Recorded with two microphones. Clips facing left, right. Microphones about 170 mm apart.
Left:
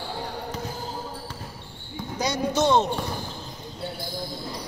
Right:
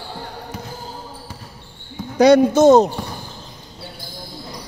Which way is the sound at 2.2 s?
60° right (ahead or behind).